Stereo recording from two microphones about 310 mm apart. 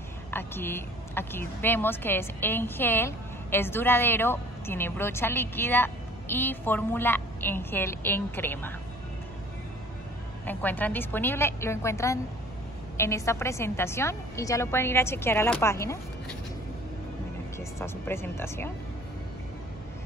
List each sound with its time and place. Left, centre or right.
0.3 s speech: centre
10.4 s speech: centre
17.6 s speech: centre